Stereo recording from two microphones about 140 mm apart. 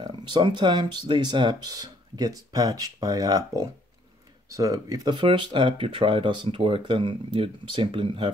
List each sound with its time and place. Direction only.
0.0 s speech: 35° right (ahead or behind)